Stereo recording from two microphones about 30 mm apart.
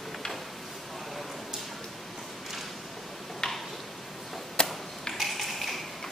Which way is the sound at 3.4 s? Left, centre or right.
Left.